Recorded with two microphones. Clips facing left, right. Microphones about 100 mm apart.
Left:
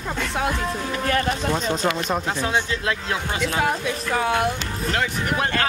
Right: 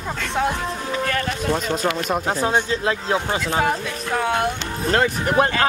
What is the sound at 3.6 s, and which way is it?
Speech, centre (ahead or behind).